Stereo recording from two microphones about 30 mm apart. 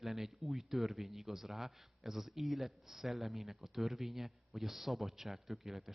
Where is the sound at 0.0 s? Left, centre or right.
Centre.